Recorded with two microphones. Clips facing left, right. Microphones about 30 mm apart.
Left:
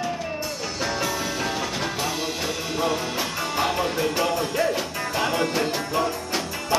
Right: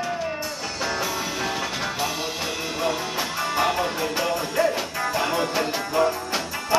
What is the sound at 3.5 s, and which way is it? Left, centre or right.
Music, centre.